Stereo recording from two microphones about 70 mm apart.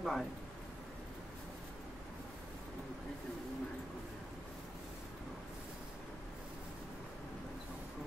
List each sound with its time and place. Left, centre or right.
0.0 s a man's voice: centre